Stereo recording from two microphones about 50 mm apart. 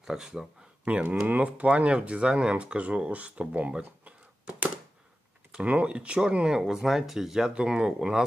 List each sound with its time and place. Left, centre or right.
0.0 s speech: centre
0.8 s speech: right
5.7 s speech: right
6.6 s speech: centre